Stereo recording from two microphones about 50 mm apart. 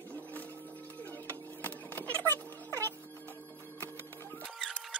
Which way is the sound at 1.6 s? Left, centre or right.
Left.